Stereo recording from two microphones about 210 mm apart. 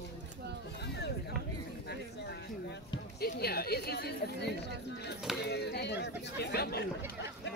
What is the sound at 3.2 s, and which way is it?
Speech, 50° left (ahead or behind).